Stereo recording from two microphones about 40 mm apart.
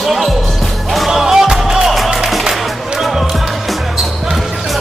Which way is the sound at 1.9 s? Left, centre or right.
Centre.